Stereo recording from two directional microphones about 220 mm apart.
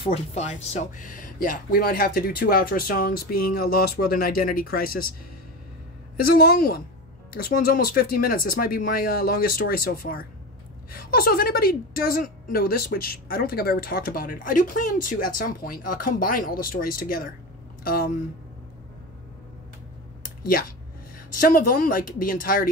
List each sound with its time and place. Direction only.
0.0 s a woman's voice: 30° left (ahead or behind)
6.1 s a woman's voice: 45° left (ahead or behind)
21.4 s a woman's voice: 40° left (ahead or behind)